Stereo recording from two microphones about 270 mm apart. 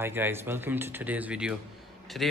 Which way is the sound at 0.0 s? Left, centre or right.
Centre.